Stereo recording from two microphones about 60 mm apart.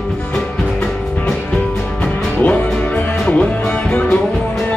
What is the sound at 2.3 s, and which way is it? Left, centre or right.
Music, left.